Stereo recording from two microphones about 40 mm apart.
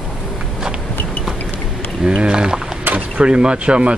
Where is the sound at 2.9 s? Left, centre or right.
Right.